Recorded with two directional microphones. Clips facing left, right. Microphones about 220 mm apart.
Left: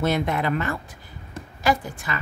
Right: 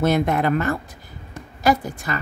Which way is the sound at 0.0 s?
45° right (ahead or behind).